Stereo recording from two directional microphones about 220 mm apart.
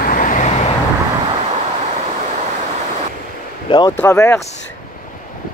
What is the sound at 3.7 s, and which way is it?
Speech, 20° left (ahead or behind).